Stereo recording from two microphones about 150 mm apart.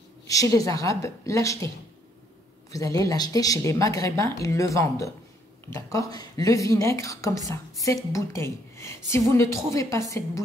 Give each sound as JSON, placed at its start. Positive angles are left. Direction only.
{"t": 0.3, "sound": "a woman's voice", "side_deg": 20}
{"t": 2.7, "sound": "a woman's voice", "side_deg": 25}